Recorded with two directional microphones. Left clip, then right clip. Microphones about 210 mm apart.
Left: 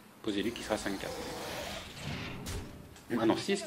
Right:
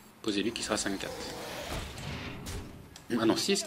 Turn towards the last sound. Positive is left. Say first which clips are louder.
# right 2 dB
turn(degrees=-20)  # may be behind; listen again after turning